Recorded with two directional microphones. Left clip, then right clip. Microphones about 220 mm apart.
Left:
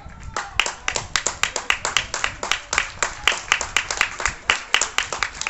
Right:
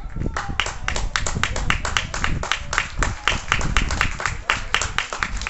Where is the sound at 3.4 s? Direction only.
55° left (ahead or behind).